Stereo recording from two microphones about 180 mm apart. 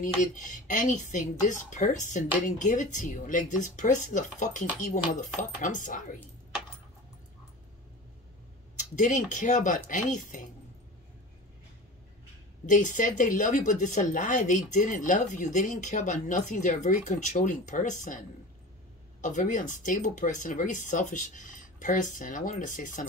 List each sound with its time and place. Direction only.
0.0 s speech: 45° left (ahead or behind)
8.7 s speech: 45° left (ahead or behind)
12.6 s speech: 45° left (ahead or behind)
19.2 s speech: 45° left (ahead or behind)